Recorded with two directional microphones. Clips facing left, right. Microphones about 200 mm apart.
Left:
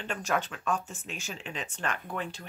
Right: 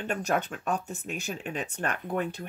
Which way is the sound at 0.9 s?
60° right (ahead or behind).